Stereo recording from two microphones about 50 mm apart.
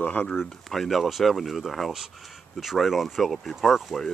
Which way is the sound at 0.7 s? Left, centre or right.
Centre.